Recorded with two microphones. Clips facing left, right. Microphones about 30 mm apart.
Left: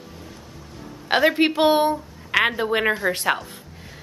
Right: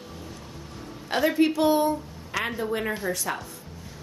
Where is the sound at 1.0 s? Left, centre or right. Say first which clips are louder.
Left 4 dB; left.